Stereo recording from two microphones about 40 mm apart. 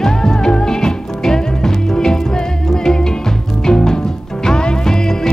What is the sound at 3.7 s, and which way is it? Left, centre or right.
Music, centre.